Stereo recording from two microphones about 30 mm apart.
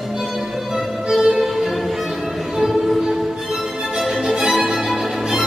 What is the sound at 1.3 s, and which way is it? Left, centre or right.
Music, centre.